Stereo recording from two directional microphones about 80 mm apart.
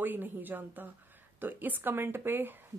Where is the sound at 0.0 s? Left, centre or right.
Right.